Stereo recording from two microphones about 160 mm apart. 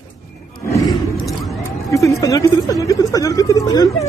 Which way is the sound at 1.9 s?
20° left (ahead or behind).